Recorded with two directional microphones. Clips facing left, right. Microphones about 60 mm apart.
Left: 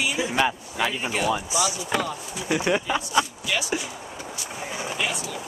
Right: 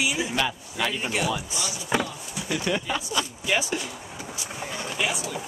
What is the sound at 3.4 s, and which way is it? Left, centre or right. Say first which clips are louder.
Speech: right 2 dB; right.